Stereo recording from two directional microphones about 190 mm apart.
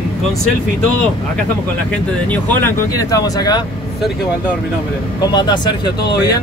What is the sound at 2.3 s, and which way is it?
Speech, 10° left (ahead or behind).